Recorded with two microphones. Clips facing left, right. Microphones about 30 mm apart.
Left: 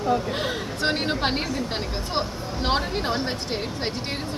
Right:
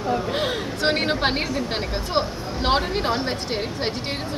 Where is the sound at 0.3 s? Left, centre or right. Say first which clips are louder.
Right 3 dB; centre.